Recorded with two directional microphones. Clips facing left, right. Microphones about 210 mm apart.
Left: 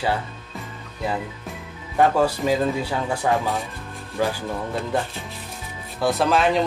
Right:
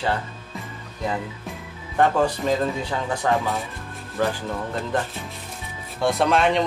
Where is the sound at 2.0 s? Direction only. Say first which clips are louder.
Left 1 dB; 5° left (ahead or behind).